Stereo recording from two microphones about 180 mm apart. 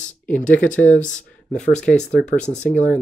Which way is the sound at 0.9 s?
45° left (ahead or behind).